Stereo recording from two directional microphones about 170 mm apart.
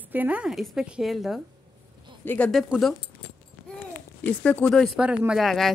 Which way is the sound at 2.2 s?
10° left (ahead or behind).